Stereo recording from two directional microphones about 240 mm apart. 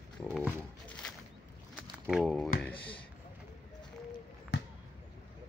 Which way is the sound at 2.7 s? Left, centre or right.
Left.